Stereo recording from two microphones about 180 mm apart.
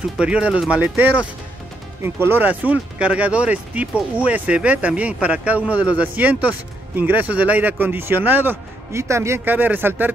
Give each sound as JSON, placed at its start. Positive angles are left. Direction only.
{"t": 0.2, "sound": "speech", "side_deg": -5}